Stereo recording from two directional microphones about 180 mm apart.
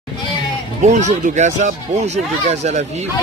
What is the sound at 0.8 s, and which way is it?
Speech, 40° right (ahead or behind).